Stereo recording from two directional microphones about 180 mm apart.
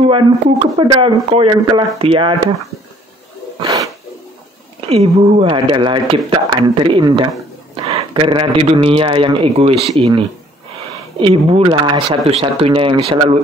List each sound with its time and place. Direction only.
0.7 s speech: 25° right (ahead or behind)
3.5 s a sound: 20° right (ahead or behind)
4.8 s a man's voice: 35° right (ahead or behind)